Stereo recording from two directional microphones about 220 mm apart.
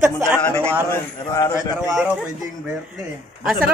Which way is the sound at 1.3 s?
15° left (ahead or behind).